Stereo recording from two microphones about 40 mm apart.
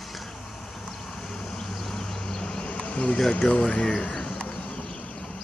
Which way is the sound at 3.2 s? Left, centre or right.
Centre.